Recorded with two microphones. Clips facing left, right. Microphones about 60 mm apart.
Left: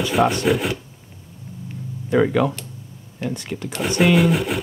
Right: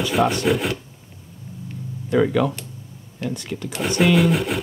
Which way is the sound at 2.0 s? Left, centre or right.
Left.